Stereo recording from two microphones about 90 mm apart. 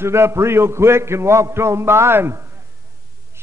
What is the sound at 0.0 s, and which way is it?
A man's voice, 30° right (ahead or behind).